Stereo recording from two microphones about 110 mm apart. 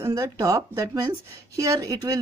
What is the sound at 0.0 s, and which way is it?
A woman's voice, 30° right (ahead or behind).